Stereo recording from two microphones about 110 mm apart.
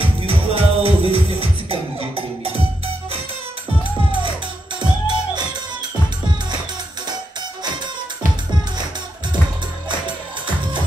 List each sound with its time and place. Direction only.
0.0 s music: 55° right (ahead or behind)
4.7 s music: 40° right (ahead or behind)